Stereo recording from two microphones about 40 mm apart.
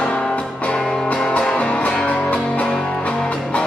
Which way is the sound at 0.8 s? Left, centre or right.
Centre.